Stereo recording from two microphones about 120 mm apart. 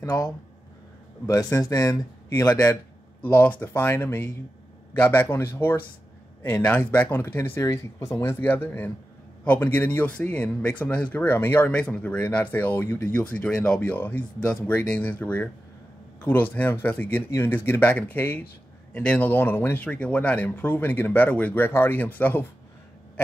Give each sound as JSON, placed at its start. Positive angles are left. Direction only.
{"t": 0.0, "sound": "a man's voice", "side_deg": 30}
{"t": 2.7, "sound": "a man's voice", "side_deg": 15}